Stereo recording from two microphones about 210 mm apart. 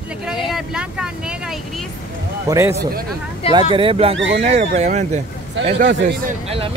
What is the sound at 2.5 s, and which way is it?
Speech, 15° right (ahead or behind).